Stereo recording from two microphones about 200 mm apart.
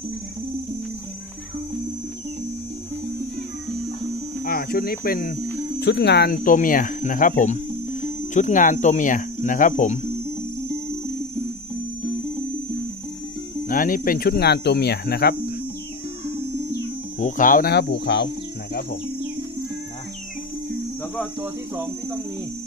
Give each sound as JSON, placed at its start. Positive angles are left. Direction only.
{"t": 4.5, "sound": "speech", "side_deg": 45}
{"t": 13.7, "sound": "speech", "side_deg": 45}
{"t": 17.2, "sound": "speech", "side_deg": 40}